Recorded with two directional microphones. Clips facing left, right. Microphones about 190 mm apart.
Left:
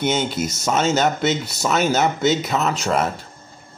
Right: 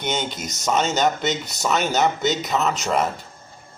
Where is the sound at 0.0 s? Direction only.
5° left (ahead or behind).